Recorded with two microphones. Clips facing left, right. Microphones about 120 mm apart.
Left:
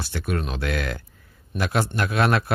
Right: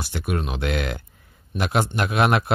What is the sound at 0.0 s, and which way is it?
Speech, 15° right (ahead or behind).